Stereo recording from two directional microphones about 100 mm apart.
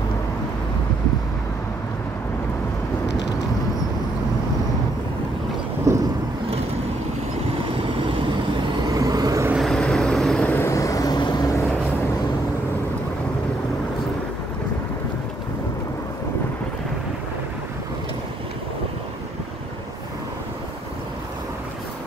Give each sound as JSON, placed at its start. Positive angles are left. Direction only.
{"t": 5.9, "sound": "vehicle", "side_deg": -30}
{"t": 7.7, "sound": "vehicle", "side_deg": -60}
{"t": 8.8, "sound": "vehicle", "side_deg": -40}
{"t": 9.6, "sound": "vehicle", "side_deg": 5}
{"t": 10.4, "sound": "vehicle", "side_deg": 15}
{"t": 10.7, "sound": "vehicle", "side_deg": 35}